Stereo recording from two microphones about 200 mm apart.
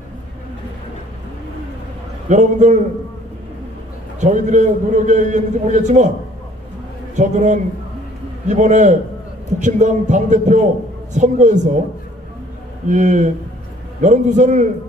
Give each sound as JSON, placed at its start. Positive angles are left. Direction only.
{"t": 2.2, "sound": "a man's voice", "side_deg": -35}
{"t": 4.2, "sound": "a man's voice", "side_deg": -35}
{"t": 7.2, "sound": "a man's voice", "side_deg": -35}
{"t": 12.8, "sound": "a man's voice", "side_deg": -40}